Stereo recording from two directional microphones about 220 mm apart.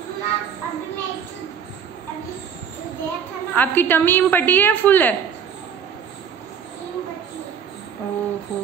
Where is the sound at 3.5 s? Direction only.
10° left (ahead or behind).